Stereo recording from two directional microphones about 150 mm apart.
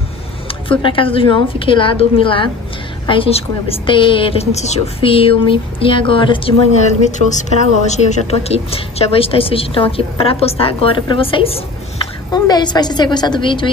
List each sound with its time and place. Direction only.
0.7 s a woman's voice: 35° left (ahead or behind)
7.1 s a woman's voice: 55° left (ahead or behind)
12.3 s a woman's voice: 25° left (ahead or behind)